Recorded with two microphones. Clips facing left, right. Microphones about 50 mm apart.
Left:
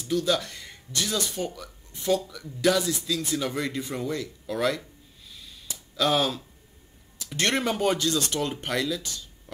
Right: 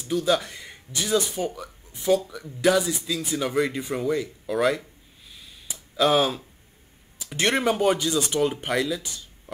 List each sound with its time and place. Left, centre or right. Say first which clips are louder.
0.0 s speech: right 2 dB; centre
5.7 s a sound: right 4 dB; centre
7.2 s speech: right 2 dB; centre